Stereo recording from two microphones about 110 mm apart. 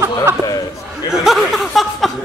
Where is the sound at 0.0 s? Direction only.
25° right (ahead or behind).